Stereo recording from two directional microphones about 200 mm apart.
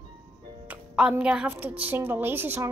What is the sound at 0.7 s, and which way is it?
Child singing, 5° right (ahead or behind).